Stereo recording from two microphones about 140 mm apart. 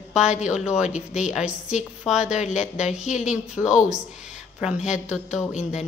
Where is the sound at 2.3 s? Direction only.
55° left (ahead or behind).